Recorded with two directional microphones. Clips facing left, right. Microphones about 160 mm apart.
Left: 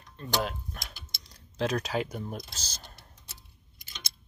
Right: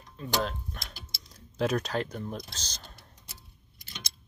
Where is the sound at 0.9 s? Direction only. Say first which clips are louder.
Right 2 dB; centre (ahead or behind).